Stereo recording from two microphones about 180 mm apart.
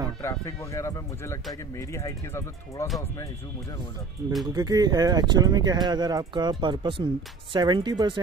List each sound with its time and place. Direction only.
0.2 s speech: 15° left (ahead or behind)
4.5 s speech: 20° right (ahead or behind)